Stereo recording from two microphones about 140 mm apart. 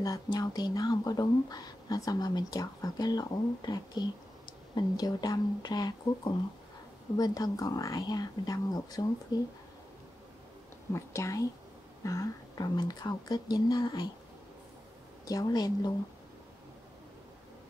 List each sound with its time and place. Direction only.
0.0 s speech: 25° left (ahead or behind)
10.9 s speech: 20° left (ahead or behind)
15.2 s speech: 25° left (ahead or behind)